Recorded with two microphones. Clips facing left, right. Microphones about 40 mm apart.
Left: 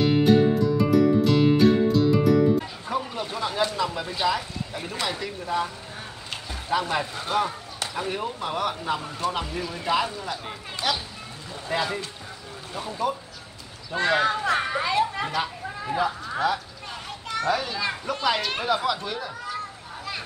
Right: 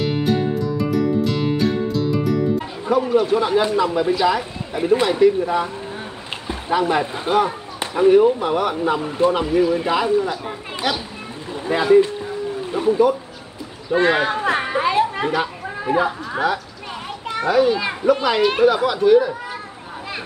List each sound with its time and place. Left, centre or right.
0.0 s music: centre
2.9 s speech: centre
6.7 s a man's voice: centre
17.5 s a man's voice: centre
18.2 s a man's voice: centre